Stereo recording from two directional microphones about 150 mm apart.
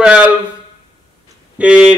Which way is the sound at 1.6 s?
5° right (ahead or behind).